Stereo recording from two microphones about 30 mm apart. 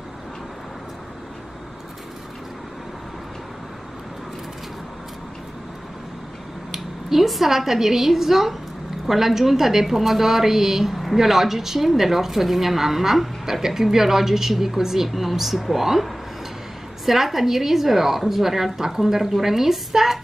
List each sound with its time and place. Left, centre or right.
6.7 s a sound: centre
7.2 s a woman's voice: centre
17.0 s a woman's voice: centre